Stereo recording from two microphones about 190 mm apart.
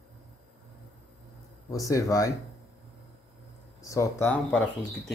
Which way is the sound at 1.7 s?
15° left (ahead or behind).